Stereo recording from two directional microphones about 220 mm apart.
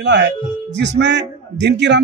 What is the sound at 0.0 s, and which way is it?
A man's voice, 50° right (ahead or behind).